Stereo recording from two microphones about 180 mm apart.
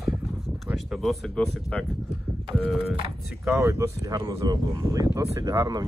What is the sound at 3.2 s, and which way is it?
Speech, 5° right (ahead or behind).